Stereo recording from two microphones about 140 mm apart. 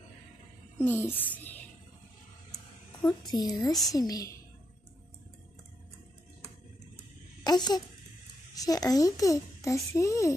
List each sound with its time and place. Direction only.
0.8 s a woman's voice: 15° left (ahead or behind)
3.0 s speech: 30° left (ahead or behind)
7.4 s speech: 30° left (ahead or behind)